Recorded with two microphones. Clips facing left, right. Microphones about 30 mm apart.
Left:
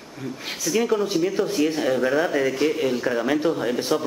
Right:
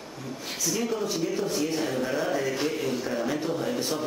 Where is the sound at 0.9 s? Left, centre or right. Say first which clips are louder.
Left 6 dB; left.